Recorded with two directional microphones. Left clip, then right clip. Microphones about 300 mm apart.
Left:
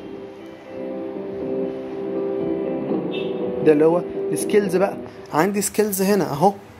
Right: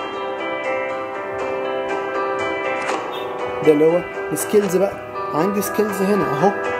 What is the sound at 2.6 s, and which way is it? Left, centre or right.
Music, right.